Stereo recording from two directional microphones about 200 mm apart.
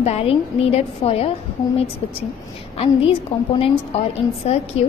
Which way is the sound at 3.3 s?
30° left (ahead or behind).